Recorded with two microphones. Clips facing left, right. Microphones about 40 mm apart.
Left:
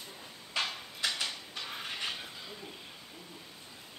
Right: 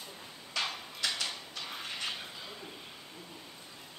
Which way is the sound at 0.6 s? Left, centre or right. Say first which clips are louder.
Left 1 dB; left.